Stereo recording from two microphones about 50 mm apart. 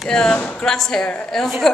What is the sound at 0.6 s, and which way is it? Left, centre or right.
Speech, centre.